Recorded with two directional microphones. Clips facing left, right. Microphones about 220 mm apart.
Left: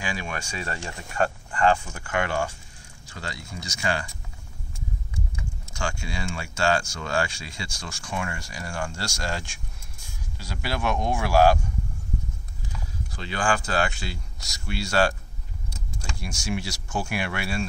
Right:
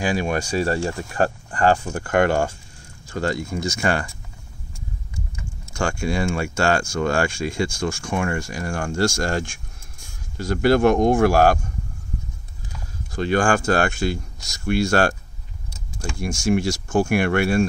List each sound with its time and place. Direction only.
0.0 s speech: 40° right (ahead or behind)
1.9 s speech: 50° right (ahead or behind)
5.7 s speech: 50° right (ahead or behind)
13.1 s speech: 50° right (ahead or behind)